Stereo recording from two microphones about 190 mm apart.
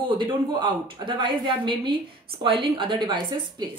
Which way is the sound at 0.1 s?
25° right (ahead or behind).